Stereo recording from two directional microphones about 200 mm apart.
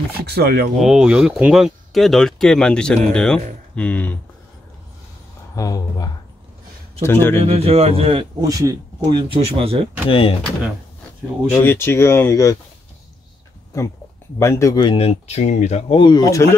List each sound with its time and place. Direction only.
0.3 s speech: 55° right (ahead or behind)
0.7 s speech: 5° right (ahead or behind)
5.6 s speech: 15° left (ahead or behind)
7.4 s speech: 30° right (ahead or behind)
8.4 s speech: 15° right (ahead or behind)
10.0 s speech: 25° left (ahead or behind)
11.6 s speech: 10° left (ahead or behind)
14.4 s speech: 15° left (ahead or behind); by 16.0 s 35° left (ahead or behind)
16.0 s speech: 20° left (ahead or behind)